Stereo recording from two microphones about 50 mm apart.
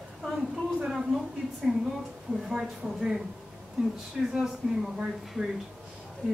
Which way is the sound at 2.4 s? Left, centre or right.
Centre.